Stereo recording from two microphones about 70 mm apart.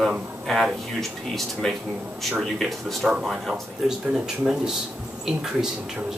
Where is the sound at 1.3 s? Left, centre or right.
Centre.